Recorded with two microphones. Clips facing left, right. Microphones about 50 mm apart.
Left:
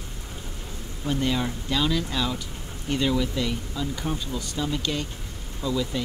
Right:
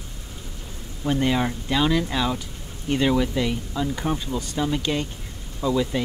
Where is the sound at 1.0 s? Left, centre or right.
Right.